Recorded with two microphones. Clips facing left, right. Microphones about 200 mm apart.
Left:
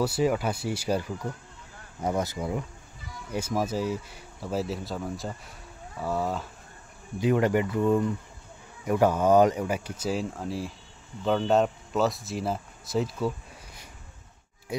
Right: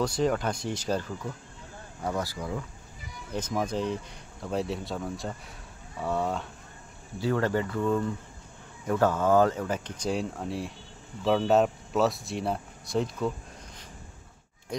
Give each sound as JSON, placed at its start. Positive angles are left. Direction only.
{"t": 0.0, "sound": "speech", "side_deg": 5}
{"t": 3.3, "sound": "speech", "side_deg": 10}
{"t": 7.2, "sound": "speech", "side_deg": 15}
{"t": 14.7, "sound": "speech", "side_deg": 5}